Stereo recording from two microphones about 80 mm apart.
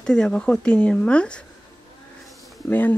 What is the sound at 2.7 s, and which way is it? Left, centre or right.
Speech, left.